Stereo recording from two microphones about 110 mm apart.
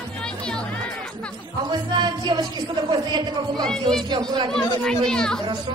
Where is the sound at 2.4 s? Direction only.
40° right (ahead or behind).